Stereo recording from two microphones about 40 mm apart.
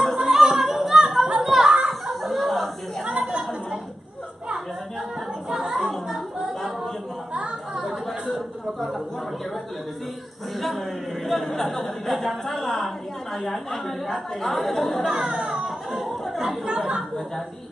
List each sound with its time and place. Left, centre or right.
0.0 s a sound: centre
1.4 s children playing: centre
1.9 s fowl: centre
3.1 s chatter: centre
5.5 s music: centre
11.2 s speech: centre
14.0 s speech: centre
15.0 s speech: centre
15.5 s a sound: centre
16.6 s speech: right